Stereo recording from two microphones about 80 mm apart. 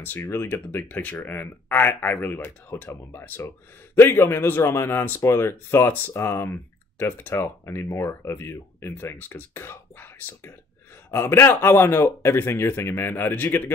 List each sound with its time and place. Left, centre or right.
0.0 s a man's voice: left